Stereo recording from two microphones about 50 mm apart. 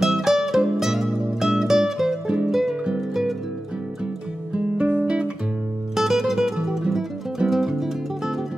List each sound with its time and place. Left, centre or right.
0.0 s music: centre
2.2 s music: centre
2.5 s music: centre
5.0 s guitar: right
5.9 s music: centre